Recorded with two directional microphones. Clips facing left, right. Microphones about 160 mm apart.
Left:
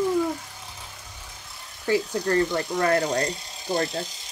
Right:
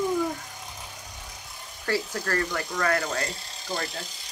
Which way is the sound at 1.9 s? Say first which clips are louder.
Left 5 dB; 20° left (ahead or behind).